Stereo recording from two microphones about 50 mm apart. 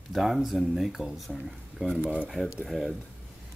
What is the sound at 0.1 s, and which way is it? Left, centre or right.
Speech, centre.